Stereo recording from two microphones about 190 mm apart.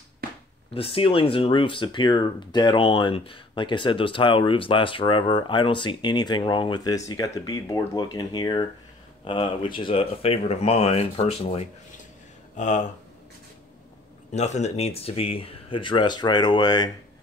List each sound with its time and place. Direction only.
0.7 s speech: 30° left (ahead or behind)
14.3 s speech: 35° left (ahead or behind)